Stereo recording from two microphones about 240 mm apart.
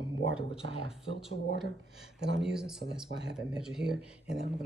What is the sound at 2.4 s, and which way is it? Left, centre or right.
Speech, centre.